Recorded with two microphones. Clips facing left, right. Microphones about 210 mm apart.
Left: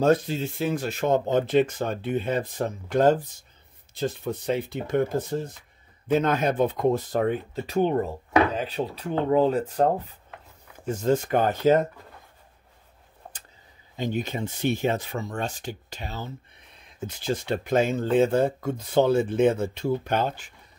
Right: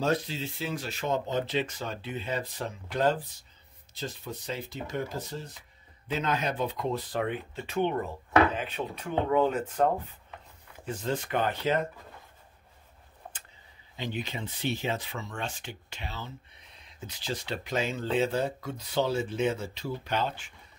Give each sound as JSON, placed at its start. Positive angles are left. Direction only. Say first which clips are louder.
{"t": 0.0, "sound": "speech", "louder": "left 7 dB", "side_deg": 50}
{"t": 13.9, "sound": "speech", "louder": "left 7 dB", "side_deg": 45}